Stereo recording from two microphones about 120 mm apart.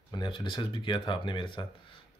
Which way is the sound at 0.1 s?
40° left (ahead or behind).